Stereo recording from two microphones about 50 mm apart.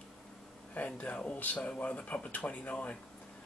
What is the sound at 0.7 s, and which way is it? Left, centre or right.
Speech, left.